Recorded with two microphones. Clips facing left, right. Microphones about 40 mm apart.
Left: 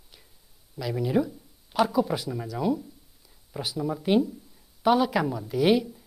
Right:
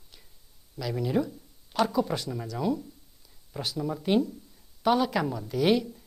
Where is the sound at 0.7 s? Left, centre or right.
Centre.